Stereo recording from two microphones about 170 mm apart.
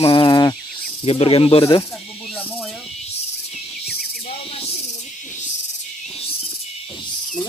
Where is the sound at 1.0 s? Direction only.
35° left (ahead or behind).